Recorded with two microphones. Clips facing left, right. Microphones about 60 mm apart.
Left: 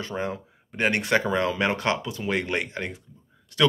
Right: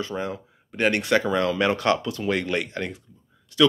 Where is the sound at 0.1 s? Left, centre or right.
Left.